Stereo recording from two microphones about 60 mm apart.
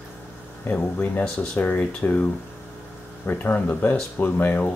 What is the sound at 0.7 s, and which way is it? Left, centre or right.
Speech, left.